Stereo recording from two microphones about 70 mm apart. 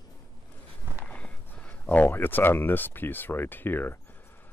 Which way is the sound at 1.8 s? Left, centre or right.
Left.